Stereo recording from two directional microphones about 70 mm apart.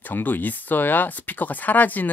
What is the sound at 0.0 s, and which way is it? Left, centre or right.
Speech, left.